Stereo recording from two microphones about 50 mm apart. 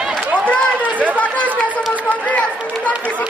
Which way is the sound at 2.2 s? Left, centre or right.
Left.